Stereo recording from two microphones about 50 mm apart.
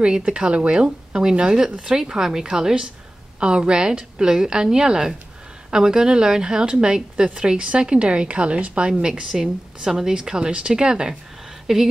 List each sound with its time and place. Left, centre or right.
0.0 s a woman's voice: right
9.3 s a woman's voice: centre